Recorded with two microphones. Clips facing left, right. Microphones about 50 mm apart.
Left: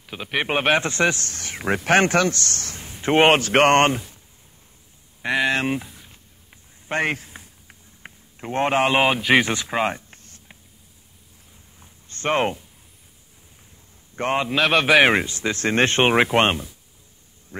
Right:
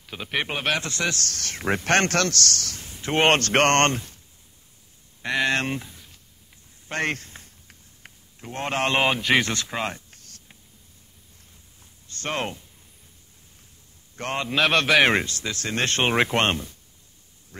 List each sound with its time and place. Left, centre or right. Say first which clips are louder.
0.0 s a man's voice: left 2 dB; centre
0.5 s a man's voice: left 6 dB; left
3.3 s speech: left 1 dB; centre
5.2 s a sound: left 2 dB; centre
8.0 s a sound: left 7 dB; left
8.8 s speech: left 3 dB; centre; by 10.6 s left
11.8 s a sound: left 6 dB; left
14.1 s a man's voice: left 6 dB; left
14.5 s speech: left 2 dB; centre; by 16.2 s left
16.2 s speech: left 4 dB; centre
17.5 s quack: left 8 dB; left